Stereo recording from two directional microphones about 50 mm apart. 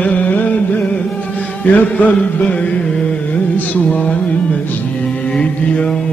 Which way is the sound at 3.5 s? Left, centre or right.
Left.